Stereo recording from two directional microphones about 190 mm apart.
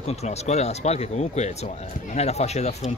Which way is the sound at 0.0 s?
35° left (ahead or behind).